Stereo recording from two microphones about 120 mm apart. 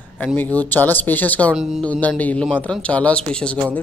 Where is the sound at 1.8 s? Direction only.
10° left (ahead or behind).